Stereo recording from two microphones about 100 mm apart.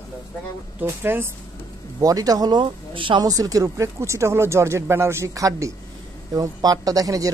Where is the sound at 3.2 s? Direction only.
35° right (ahead or behind).